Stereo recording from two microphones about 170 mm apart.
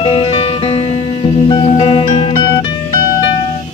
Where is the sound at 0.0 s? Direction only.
30° left (ahead or behind).